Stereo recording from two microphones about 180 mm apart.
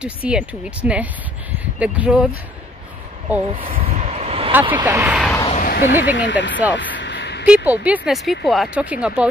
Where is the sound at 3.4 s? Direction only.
30° right (ahead or behind).